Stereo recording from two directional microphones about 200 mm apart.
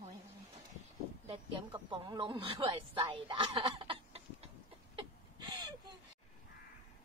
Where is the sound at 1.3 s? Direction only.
25° right (ahead or behind).